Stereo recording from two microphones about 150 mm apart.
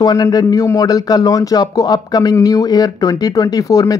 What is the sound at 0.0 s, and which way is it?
Speech, 25° left (ahead or behind).